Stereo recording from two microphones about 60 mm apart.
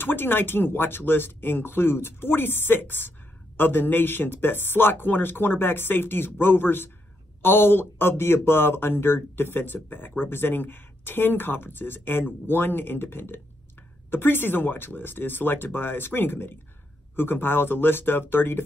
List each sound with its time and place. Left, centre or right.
0.0 s speech: left